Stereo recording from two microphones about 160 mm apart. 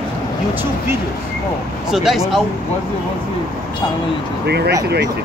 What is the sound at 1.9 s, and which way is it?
Speech, centre (ahead or behind).